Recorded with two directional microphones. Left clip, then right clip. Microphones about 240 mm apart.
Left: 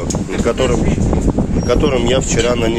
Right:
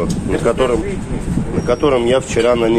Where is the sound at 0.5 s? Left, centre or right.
Centre.